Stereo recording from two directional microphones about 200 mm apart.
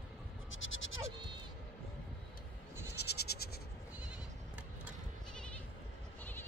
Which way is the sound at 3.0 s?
55° left (ahead or behind).